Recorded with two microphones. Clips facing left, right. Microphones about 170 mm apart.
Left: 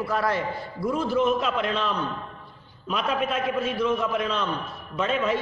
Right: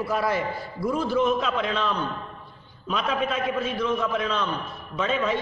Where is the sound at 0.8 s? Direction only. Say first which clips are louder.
Even; centre (ahead or behind).